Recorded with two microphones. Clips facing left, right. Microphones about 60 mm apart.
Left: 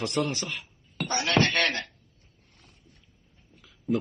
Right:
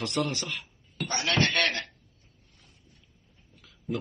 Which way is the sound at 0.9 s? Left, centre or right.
Left.